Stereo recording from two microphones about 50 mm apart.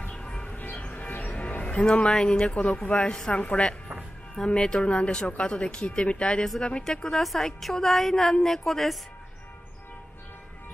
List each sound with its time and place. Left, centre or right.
0.1 s music: centre
0.5 s music: left
1.6 s a woman's voice: left; by 8.9 s centre